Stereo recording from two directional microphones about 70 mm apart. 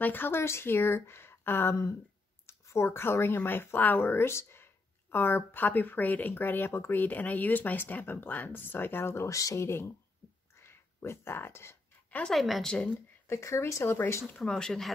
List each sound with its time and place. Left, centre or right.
0.0 s speech: left
10.5 s a sound: left
12.3 s a woman's voice: centre
13.3 s speech: left
14.2 s speech: centre